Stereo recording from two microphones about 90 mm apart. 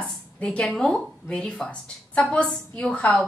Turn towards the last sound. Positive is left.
turn(degrees=5)  # may be behind; listen again after turning